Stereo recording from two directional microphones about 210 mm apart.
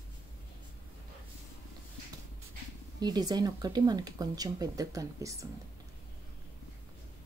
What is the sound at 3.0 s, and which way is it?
Speech, 20° right (ahead or behind).